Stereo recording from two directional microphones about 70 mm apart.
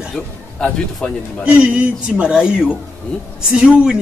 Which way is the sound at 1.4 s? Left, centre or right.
Centre.